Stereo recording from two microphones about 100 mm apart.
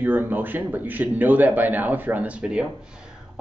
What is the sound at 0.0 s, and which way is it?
A man's voice, 20° right (ahead or behind).